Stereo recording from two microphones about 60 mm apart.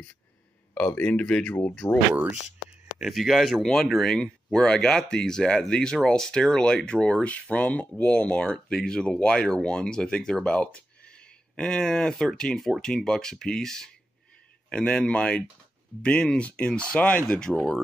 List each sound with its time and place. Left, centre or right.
0.7 s speech: left
1.8 s speech: left
3.0 s speech: centre